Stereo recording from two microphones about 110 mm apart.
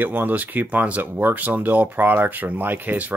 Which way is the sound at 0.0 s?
15° right (ahead or behind).